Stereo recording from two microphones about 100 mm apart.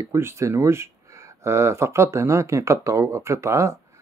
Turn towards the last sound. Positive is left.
turn(degrees=-30)  # may be behind; listen again after turning